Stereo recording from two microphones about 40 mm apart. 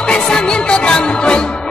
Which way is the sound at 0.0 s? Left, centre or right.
Centre.